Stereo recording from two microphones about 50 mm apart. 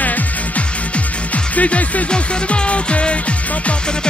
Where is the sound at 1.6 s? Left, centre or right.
Left.